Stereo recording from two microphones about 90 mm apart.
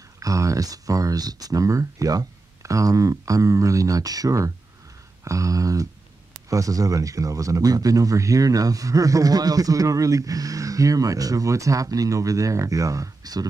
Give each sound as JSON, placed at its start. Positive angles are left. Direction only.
{"t": 0.2, "sound": "speech", "side_deg": -40}